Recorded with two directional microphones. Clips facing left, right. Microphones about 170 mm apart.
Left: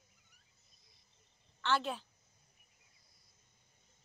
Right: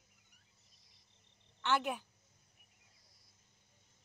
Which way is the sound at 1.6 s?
15° right (ahead or behind).